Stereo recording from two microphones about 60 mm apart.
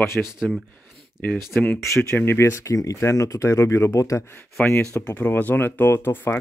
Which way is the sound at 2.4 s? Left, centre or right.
Left.